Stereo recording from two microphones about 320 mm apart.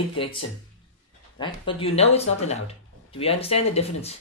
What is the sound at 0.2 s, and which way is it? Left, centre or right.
Speech, centre.